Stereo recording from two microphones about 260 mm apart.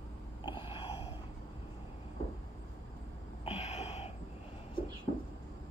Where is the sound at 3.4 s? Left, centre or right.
Left.